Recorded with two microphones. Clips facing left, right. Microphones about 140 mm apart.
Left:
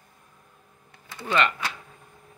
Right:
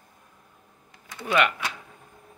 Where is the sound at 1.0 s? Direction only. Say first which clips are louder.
Right 1 dB; 10° right (ahead or behind).